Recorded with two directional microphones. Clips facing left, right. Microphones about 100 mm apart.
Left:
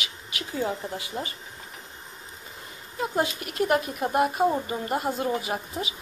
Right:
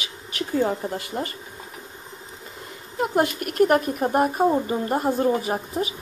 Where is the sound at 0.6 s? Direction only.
45° right (ahead or behind).